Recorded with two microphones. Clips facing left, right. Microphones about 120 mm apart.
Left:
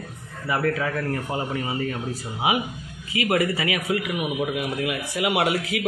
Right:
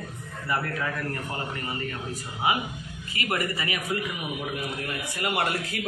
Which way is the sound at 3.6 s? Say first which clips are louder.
Left 5 dB; 90° left.